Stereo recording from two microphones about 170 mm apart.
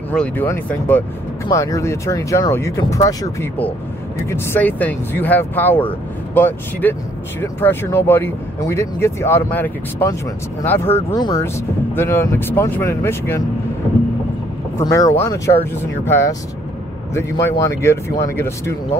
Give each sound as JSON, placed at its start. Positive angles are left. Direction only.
{"t": 0.1, "sound": "speech", "side_deg": 5}
{"t": 14.8, "sound": "speech", "side_deg": 20}
{"t": 17.5, "sound": "speech", "side_deg": 15}